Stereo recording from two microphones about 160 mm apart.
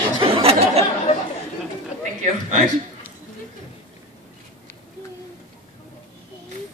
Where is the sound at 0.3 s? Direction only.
35° right (ahead or behind).